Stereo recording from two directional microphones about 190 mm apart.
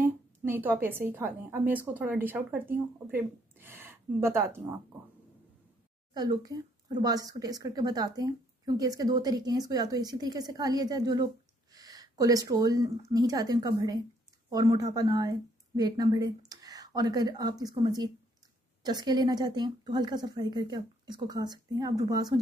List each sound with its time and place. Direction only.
0.0 s a woman's voice: 10° right (ahead or behind)
6.1 s a woman's voice: 20° right (ahead or behind)